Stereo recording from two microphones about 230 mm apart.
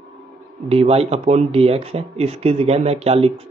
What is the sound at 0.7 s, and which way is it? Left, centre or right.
Speech, right.